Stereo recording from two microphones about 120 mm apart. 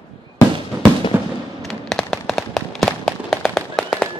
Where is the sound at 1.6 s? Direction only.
5° left (ahead or behind).